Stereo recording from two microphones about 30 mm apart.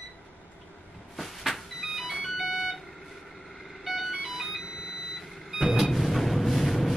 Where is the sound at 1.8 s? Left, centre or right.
Centre.